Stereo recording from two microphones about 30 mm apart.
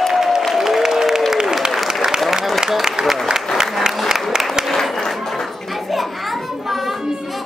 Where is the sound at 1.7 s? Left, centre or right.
Centre.